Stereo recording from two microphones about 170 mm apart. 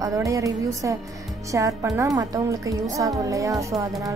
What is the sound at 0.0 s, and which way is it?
Speech, 20° right (ahead or behind).